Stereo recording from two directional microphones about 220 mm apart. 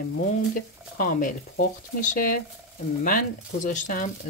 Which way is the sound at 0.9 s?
40° left (ahead or behind).